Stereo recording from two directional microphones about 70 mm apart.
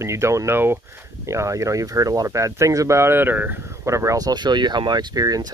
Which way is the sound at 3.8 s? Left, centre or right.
Right.